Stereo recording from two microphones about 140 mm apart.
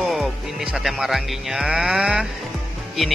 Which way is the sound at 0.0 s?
Centre (ahead or behind).